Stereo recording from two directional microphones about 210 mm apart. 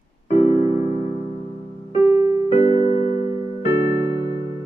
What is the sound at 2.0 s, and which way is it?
Music, 15° right (ahead or behind).